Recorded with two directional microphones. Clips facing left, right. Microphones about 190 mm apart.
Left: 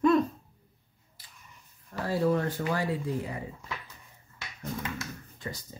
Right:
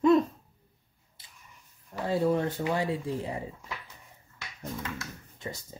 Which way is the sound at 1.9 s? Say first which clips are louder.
Even; 20° right (ahead or behind).